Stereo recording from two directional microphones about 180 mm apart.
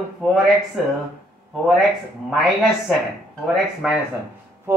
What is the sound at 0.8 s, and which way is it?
Speech, centre (ahead or behind).